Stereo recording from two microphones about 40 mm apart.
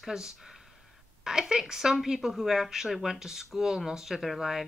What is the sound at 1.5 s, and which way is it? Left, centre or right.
Speech, centre.